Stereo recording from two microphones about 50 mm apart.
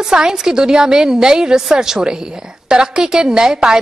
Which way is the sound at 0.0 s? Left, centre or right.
Centre.